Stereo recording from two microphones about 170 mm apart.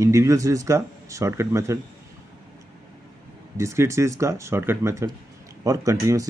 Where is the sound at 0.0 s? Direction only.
15° right (ahead or behind).